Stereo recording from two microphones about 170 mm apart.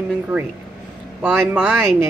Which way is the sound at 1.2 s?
10° right (ahead or behind).